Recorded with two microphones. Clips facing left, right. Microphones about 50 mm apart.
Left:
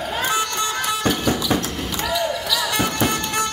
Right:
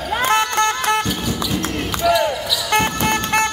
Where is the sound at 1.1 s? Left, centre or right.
Left.